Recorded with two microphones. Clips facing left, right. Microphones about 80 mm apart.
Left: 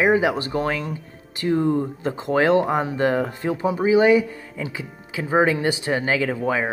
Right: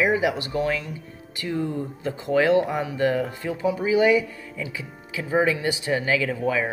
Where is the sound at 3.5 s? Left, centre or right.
Left.